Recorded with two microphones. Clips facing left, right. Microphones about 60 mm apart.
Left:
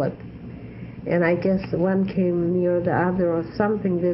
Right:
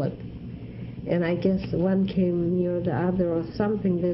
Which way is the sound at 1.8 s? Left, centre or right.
Left.